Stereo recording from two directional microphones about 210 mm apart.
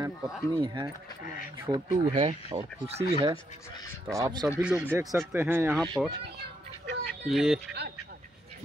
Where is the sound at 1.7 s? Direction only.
20° right (ahead or behind).